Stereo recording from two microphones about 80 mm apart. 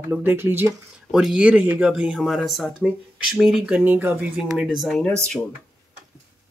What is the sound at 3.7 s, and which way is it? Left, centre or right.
Speech, right.